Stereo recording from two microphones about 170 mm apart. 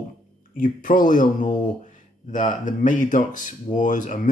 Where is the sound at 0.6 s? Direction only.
50° left (ahead or behind).